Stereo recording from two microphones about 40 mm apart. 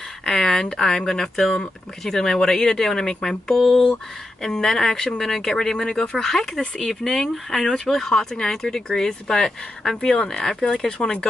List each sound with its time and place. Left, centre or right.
0.2 s speech: centre
3.5 s a sound: centre
4.4 s speech: centre